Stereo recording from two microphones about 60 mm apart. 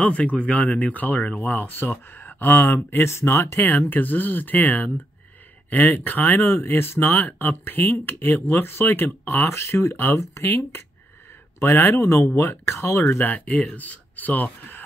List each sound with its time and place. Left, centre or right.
0.0 s speech: left
3.1 s speech: left
3.6 s speech: left
9.9 s speech: left
10.2 s speech: left
11.6 s speech: left
12.4 s speech: left
13.0 s speech: left